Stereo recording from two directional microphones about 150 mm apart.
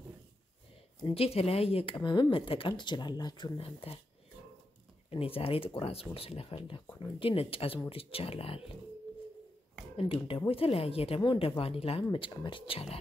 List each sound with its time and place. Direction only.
1.0 s speech: 40° left (ahead or behind)
3.5 s speech: 40° left (ahead or behind)
5.1 s speech: 40° left (ahead or behind)
9.9 s speech: 40° left (ahead or behind)